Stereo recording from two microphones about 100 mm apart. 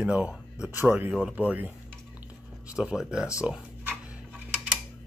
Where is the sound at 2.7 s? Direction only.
10° right (ahead or behind).